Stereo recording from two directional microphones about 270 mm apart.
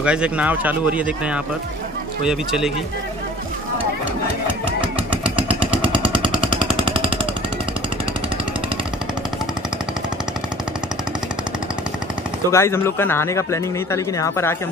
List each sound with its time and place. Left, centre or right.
0.0 s speech: centre
6.8 s jackhammer: centre
12.4 s speech: centre